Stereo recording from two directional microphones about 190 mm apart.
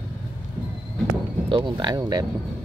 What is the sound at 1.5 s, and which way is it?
Speech, 25° right (ahead or behind).